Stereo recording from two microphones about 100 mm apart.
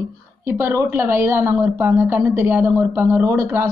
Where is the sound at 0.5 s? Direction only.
25° right (ahead or behind).